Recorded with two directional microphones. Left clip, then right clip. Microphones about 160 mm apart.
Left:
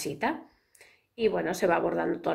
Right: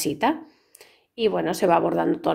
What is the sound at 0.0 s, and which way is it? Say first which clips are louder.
A woman's voice: right 7 dB; 50° right (ahead or behind).